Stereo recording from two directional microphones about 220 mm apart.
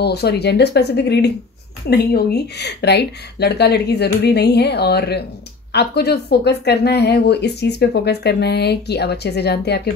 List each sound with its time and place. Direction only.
0.0 s speech: 50° left (ahead or behind)